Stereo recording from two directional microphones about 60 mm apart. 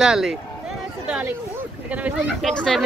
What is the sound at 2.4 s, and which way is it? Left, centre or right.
Speech, centre.